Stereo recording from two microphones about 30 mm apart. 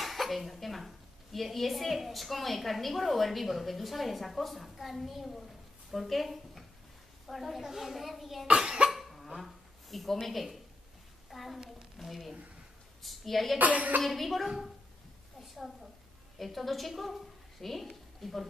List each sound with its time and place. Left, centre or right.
0.0 s a woman's voice: centre
8.9 s a sound: centre
10.2 s a woman's voice: centre
13.6 s speech: right
14.0 s a woman's voice: centre